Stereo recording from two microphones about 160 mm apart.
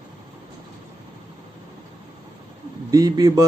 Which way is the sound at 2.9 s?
25° right (ahead or behind).